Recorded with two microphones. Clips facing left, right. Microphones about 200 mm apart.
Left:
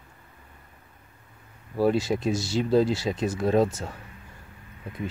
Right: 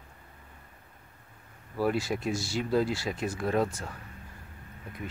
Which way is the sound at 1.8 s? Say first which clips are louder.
Left 5 dB; 25° left (ahead or behind).